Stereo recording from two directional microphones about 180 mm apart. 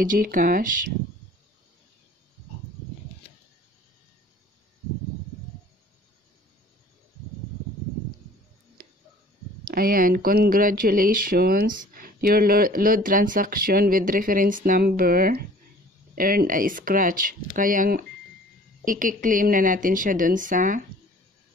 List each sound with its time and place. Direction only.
0.0 s speech: 50° right (ahead or behind)
9.8 s speech: 55° right (ahead or behind)